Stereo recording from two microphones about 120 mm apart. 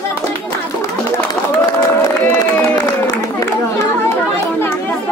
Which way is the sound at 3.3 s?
20° left (ahead or behind).